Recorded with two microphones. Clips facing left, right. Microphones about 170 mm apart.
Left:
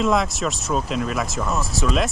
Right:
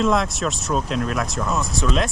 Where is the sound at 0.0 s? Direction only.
Centre (ahead or behind).